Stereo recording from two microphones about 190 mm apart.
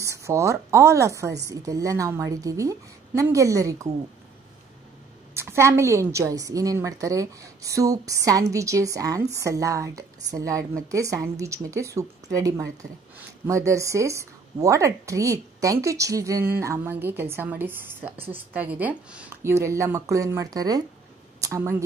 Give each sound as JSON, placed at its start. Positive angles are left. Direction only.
{"t": 0.0, "sound": "a woman's voice", "side_deg": -15}
{"t": 5.3, "sound": "a woman's voice", "side_deg": -15}